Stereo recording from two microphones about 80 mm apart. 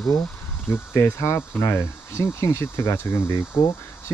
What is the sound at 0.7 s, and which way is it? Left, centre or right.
Speech, left.